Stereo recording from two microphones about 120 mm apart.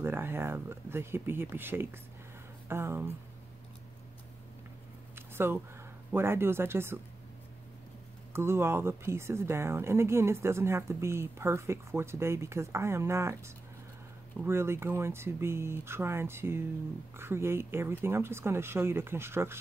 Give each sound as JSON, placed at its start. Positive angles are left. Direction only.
{"t": 0.0, "sound": "speech", "side_deg": -20}
{"t": 5.1, "sound": "a sound", "side_deg": -20}
{"t": 6.1, "sound": "speech", "side_deg": -20}
{"t": 8.3, "sound": "speech", "side_deg": -20}
{"t": 14.4, "sound": "speech", "side_deg": -20}